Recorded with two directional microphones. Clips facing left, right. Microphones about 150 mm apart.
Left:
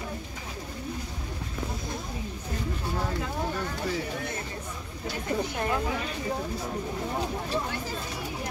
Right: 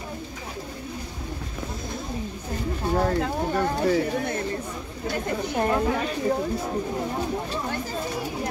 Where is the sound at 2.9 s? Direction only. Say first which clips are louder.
Right 10 dB; 65° right (ahead or behind).